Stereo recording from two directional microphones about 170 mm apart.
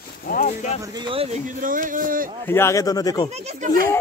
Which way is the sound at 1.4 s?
50° right (ahead or behind).